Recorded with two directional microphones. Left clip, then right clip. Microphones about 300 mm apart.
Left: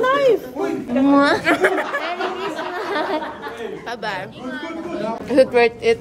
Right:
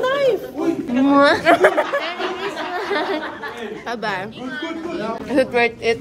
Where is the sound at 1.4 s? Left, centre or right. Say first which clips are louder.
Right 3 dB; centre.